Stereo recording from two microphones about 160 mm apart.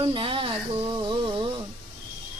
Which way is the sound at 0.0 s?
35° right (ahead or behind).